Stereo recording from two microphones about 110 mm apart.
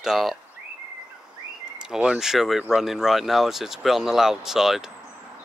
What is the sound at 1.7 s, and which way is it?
Speech, 5° right (ahead or behind).